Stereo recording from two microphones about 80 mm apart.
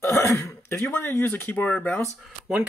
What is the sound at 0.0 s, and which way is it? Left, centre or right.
Throat clearing, left.